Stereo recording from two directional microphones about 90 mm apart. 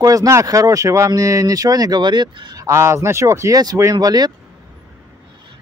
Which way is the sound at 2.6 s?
30° right (ahead or behind).